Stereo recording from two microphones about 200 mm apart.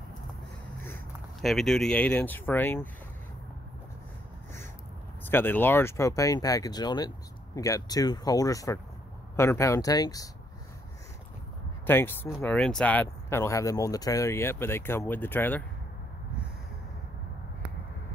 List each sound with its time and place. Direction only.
1.4 s speech: centre (ahead or behind)
5.2 s speech: 10° left (ahead or behind)
11.8 s speech: 10° left (ahead or behind)